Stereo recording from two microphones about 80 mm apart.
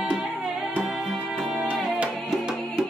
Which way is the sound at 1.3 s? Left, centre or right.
Centre.